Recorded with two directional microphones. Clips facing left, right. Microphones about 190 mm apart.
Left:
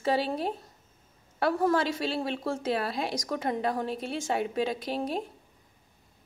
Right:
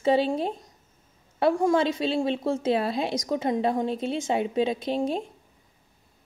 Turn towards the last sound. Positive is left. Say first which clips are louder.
# right 5 dB
turn(degrees=-25)  # may be behind; listen again after turning